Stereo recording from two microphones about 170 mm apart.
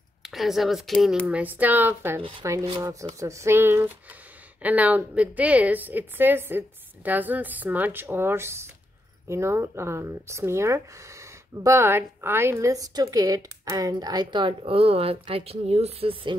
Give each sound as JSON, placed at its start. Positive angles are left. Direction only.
{"t": 0.2, "sound": "a woman's voice", "side_deg": 0}